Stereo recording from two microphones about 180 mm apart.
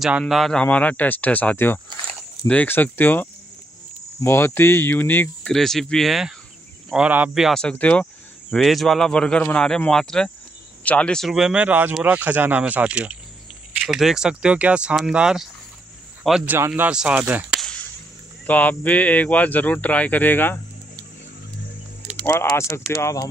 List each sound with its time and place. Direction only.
0.0 s speech: centre (ahead or behind)
17.6 s whip: 5° left (ahead or behind)
18.5 s speech: 10° left (ahead or behind)
22.1 s speech: 15° left (ahead or behind)